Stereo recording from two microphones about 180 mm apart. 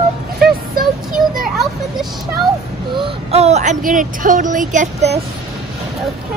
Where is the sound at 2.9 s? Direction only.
30° right (ahead or behind).